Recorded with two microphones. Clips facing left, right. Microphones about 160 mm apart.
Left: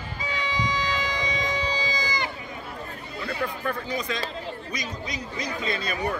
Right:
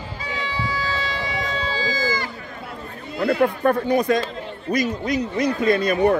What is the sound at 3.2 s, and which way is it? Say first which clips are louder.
A man's voice: right 12 dB; 65° right (ahead or behind).